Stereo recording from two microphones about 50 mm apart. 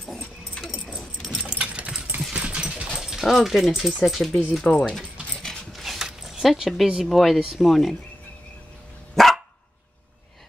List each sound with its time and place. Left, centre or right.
1.4 s a sound: right
2.3 s dog: right
3.2 s speech: centre
4.6 s speech: centre
5.7 s a sound: centre
7.1 s speech: centre
7.3 s speech: centre
7.6 s speech: centre
9.1 s dog: centre